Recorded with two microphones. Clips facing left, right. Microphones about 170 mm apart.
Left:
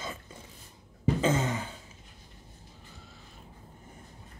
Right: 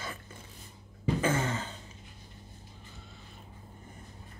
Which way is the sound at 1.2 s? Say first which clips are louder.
Left 2 dB; 20° left (ahead or behind).